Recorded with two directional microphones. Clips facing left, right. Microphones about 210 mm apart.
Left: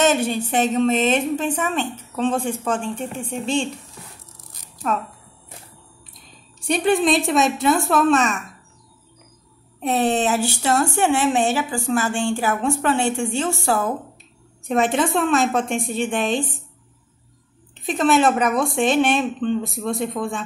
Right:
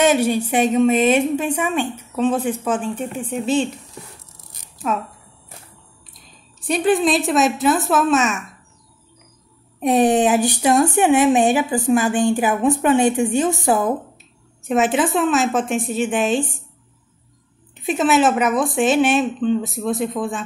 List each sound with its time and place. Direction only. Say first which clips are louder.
0.0 s a woman's voice: right 3 dB; 10° right (ahead or behind)
4.9 s speech: right 1 dB; 5° right (ahead or behind)
6.6 s speech: right 1 dB; centre (ahead or behind)
9.8 s speech: right 5 dB; 15° right (ahead or behind)
14.7 s speech: right 2 dB; 5° right (ahead or behind)
17.8 s speech: right 1 dB; 5° right (ahead or behind)